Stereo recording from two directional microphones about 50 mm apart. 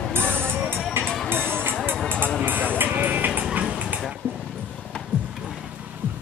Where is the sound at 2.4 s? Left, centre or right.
Right.